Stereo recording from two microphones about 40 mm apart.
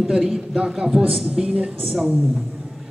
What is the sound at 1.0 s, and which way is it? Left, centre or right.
Speech, centre.